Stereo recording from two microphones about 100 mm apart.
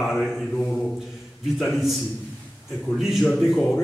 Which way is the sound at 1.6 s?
Centre (ahead or behind).